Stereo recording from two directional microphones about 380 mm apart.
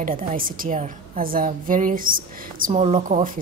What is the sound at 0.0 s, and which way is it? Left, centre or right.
A woman's voice, right.